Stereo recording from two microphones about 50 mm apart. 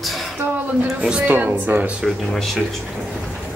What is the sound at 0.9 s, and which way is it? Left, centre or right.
Speech, right.